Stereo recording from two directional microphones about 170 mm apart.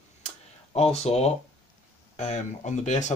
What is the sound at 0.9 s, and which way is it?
Speech, 40° left (ahead or behind).